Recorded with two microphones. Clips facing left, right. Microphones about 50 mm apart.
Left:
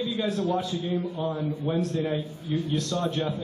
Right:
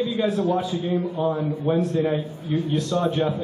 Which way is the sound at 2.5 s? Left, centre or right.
Centre.